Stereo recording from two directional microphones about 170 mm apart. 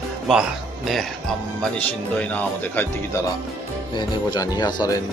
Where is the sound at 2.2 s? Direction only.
10° left (ahead or behind).